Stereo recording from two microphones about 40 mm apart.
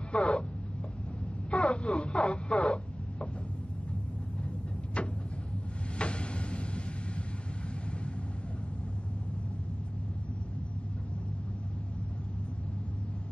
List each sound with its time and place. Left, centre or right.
0.1 s a sound: left
1.5 s radio: left
5.0 s vehicle: left